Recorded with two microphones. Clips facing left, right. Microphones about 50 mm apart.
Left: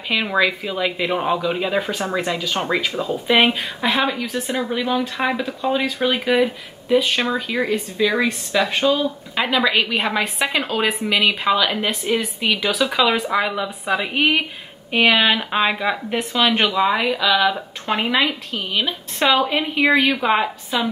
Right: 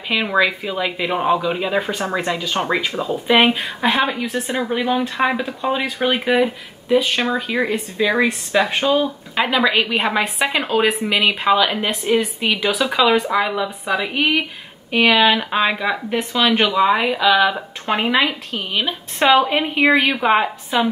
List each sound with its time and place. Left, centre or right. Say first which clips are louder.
0.1 s speech: right 1 dB; centre
5.9 s speech: right 1 dB; right
6.1 s speech: right 2 dB; centre
9.0 s a woman's voice: right 2 dB; centre